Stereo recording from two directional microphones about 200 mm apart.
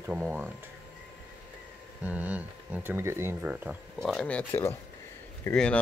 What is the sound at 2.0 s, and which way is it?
Speech, 10° right (ahead or behind).